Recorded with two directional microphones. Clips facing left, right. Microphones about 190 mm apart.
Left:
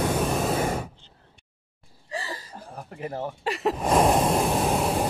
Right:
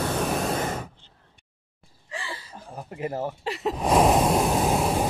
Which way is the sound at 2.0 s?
40° left (ahead or behind).